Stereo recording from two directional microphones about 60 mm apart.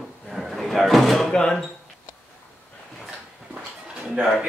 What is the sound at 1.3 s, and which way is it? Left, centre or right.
Speech, centre.